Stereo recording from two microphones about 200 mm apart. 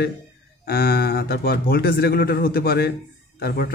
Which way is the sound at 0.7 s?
50° left (ahead or behind).